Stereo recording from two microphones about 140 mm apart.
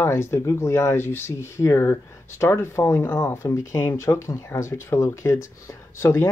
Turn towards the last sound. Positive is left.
turn(degrees=20)  # may be behind; listen again after turning